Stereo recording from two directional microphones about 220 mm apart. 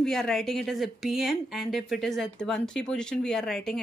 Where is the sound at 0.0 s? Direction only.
Centre (ahead or behind).